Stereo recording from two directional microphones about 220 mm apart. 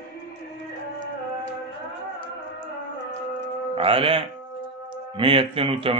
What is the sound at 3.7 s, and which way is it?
Speech, 25° right (ahead or behind).